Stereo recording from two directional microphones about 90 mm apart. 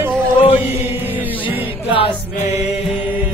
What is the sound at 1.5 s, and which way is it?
Music, 90° left.